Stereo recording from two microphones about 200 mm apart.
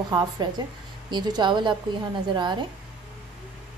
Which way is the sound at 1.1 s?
20° right (ahead or behind).